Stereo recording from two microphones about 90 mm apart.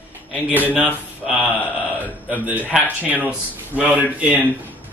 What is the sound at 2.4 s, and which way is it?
Speech, 20° right (ahead or behind).